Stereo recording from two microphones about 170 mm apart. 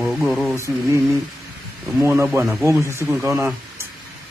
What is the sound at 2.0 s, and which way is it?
A man's voice, 15° right (ahead or behind).